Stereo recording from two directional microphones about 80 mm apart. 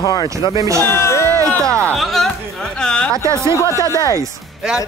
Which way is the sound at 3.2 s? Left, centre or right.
Right.